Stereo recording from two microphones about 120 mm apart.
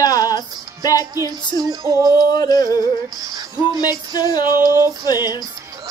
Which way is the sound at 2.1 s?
35° left (ahead or behind).